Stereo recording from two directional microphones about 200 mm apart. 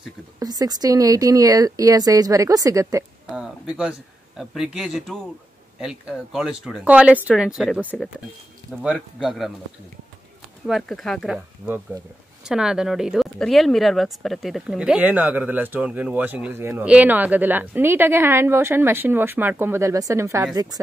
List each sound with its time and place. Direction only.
0.4 s speech: 20° right (ahead or behind)
3.3 s speech: 5° right (ahead or behind)
10.7 s speech: centre (ahead or behind)
11.3 s speech: 10° right (ahead or behind)